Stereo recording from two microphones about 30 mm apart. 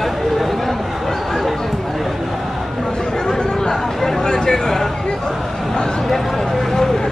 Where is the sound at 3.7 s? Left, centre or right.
Centre.